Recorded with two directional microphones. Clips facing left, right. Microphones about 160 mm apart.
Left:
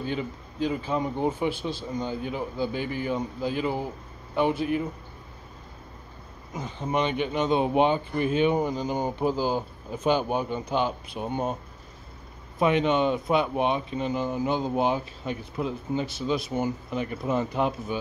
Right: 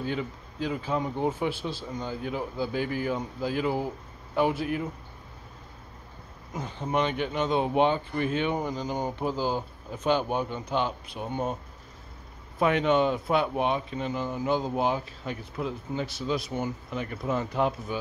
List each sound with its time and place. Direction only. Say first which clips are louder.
0.0 s a man's voice: left 1 dB; centre (ahead or behind)
6.5 s speech: left 1 dB; 10° left (ahead or behind)
7.2 s speech: left 2 dB; 20° left (ahead or behind)
12.5 s speech: left 1 dB; 20° left (ahead or behind)
14.8 s speech: left 2 dB; 25° left (ahead or behind)
16.4 s a man's voice: left 4 dB; 5° left (ahead or behind)
17.3 s speech: left 1 dB; 15° left (ahead or behind)